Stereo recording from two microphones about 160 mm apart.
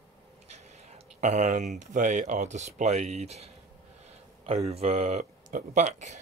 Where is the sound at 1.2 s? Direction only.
50° right (ahead or behind).